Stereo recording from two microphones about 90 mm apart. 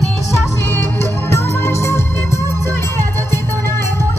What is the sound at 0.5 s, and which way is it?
Music, 25° left (ahead or behind).